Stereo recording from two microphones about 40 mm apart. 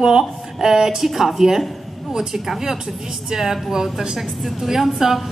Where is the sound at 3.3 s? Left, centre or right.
Centre.